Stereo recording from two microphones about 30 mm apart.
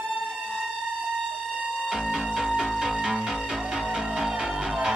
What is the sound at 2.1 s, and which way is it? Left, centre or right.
Music, right.